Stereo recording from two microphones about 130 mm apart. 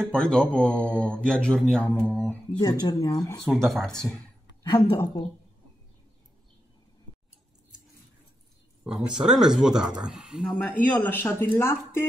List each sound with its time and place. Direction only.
0.0 s speech: 5° left (ahead or behind)
2.6 s speech: 30° left (ahead or behind)
3.6 s speech: 5° left (ahead or behind)
4.6 s speech: 25° left (ahead or behind)
8.8 s speech: 5° right (ahead or behind)
10.4 s speech: 15° left (ahead or behind)